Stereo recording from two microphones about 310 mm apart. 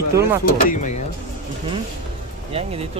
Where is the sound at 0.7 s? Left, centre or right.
Left.